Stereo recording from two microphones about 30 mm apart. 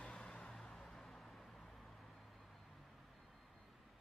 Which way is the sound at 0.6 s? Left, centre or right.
Centre.